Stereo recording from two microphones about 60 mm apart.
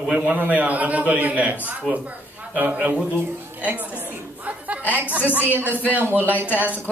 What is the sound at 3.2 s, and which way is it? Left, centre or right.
Speech, right.